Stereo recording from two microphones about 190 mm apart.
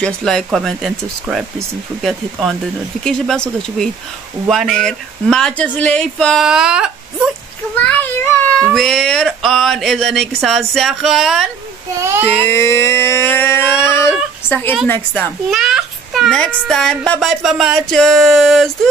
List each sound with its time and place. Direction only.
0.0 s a child's voice: 5° left (ahead or behind)
3.0 s a child's voice: 5° left (ahead or behind)
7.7 s a sound: 10° left (ahead or behind)
8.7 s a child's voice: centre (ahead or behind)
12.4 s a sound: 15° left (ahead or behind)
15.5 s a child's voice: centre (ahead or behind)